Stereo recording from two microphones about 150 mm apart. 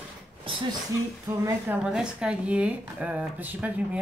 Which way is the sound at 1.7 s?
5° right (ahead or behind).